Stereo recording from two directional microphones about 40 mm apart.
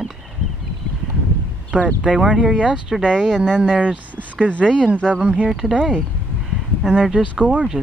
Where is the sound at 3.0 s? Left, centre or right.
Centre.